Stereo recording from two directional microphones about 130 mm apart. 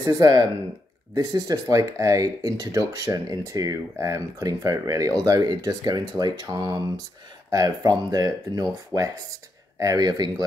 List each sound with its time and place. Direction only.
0.0 s speech: 30° right (ahead or behind)